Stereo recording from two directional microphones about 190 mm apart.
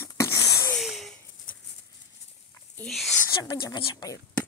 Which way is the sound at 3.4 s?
20° left (ahead or behind).